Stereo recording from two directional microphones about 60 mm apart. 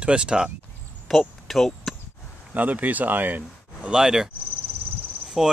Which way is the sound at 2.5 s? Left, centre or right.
Right.